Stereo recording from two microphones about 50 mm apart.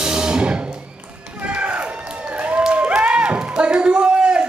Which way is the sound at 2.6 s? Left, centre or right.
Right.